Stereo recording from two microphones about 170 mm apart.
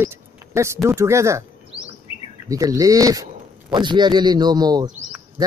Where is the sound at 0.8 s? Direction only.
15° right (ahead or behind).